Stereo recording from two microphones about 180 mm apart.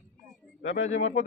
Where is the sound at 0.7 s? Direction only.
85° left.